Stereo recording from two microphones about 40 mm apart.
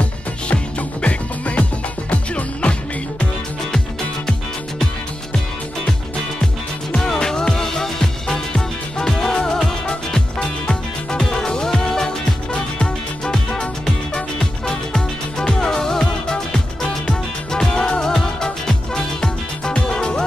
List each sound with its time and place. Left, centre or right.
0.0 s music: left
6.9 s music: centre